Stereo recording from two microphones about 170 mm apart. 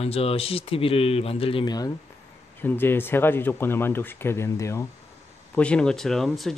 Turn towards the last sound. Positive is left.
turn(degrees=0)  # may be behind; listen again after turning